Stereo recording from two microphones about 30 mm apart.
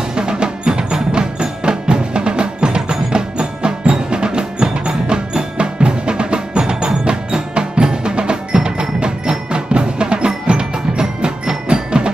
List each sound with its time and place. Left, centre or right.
0.1 s percussion: right